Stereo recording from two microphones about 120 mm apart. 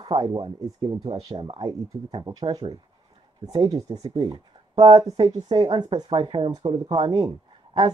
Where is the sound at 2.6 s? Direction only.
50° right (ahead or behind).